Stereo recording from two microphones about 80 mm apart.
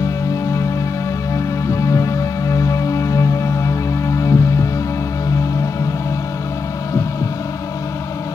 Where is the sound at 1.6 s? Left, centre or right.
Left.